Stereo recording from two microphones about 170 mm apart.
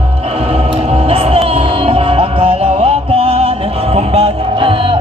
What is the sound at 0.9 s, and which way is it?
Music, 35° right (ahead or behind).